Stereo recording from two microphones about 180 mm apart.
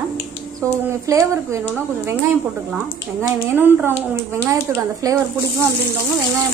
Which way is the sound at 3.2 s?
10° right (ahead or behind).